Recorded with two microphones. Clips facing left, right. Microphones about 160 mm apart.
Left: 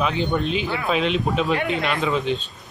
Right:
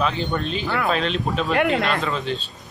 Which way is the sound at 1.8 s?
10° left (ahead or behind).